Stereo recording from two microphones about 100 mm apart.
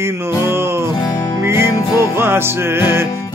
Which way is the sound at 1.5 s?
25° right (ahead or behind).